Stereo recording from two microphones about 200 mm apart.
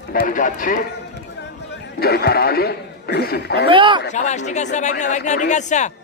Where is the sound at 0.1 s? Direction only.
45° left (ahead or behind).